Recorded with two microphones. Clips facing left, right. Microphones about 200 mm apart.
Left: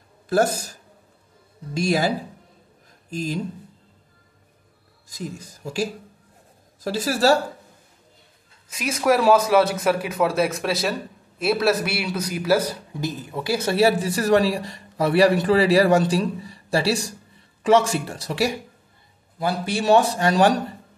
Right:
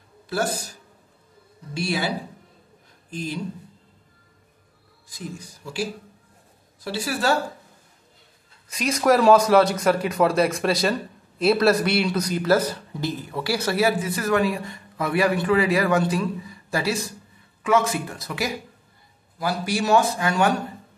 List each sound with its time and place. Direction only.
0.3 s a man's voice: 45° left (ahead or behind)
3.1 s speech: 40° left (ahead or behind)
5.6 s a man's voice: 40° left (ahead or behind)
8.6 s a man's voice: 5° left (ahead or behind); by 20.6 s 35° left (ahead or behind)